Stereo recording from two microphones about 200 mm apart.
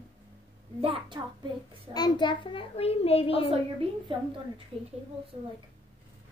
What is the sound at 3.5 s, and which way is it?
A woman's voice, 30° right (ahead or behind).